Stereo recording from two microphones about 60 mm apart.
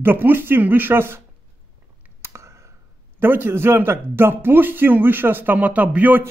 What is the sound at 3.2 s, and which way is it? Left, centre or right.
A man's voice, right.